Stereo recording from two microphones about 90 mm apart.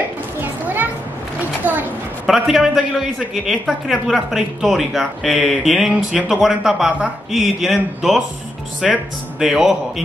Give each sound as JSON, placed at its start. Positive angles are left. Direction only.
{"t": 0.4, "sound": "children playing", "side_deg": -20}
{"t": 1.6, "sound": "a sound", "side_deg": -20}
{"t": 2.2, "sound": "speech", "side_deg": 0}